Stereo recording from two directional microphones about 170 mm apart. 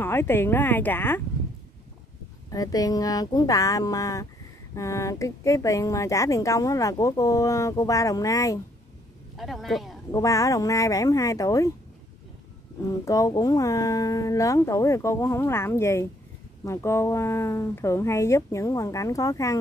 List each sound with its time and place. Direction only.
0.0 s speech: 15° left (ahead or behind)
2.5 s a woman's voice: 20° left (ahead or behind)
9.4 s speech: centre (ahead or behind)
10.1 s a woman's voice: 20° left (ahead or behind)
12.8 s a woman's voice: 20° left (ahead or behind)